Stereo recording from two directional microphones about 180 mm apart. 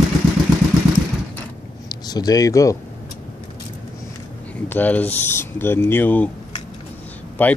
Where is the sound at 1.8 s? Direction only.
20° left (ahead or behind).